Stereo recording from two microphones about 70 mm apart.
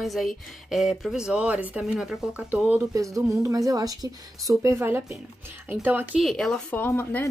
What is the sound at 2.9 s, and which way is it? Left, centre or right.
Speech, right.